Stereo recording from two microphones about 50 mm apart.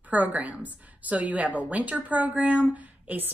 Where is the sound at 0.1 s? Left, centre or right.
Right.